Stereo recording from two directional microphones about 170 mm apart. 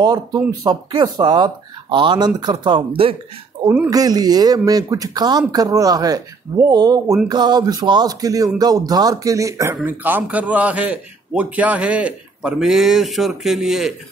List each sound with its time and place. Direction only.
0.0 s speech: 20° right (ahead or behind)
3.6 s a man's voice: 5° right (ahead or behind)
3.9 s a man's voice: 20° right (ahead or behind); by 13.9 s centre (ahead or behind)